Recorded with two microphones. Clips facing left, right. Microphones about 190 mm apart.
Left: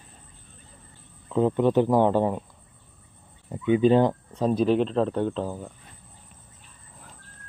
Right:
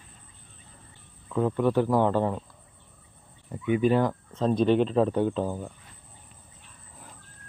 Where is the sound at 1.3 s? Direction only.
20° left (ahead or behind).